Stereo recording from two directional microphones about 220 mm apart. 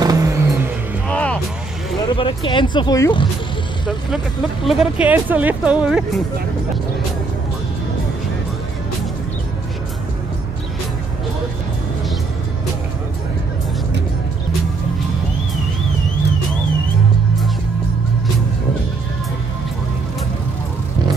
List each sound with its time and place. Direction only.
0.0 s vehicle: 15° right (ahead or behind)
1.0 s vehicle: 5° left (ahead or behind)
2.1 s speech: 25° left (ahead or behind)
4.6 s speech: 5° right (ahead or behind)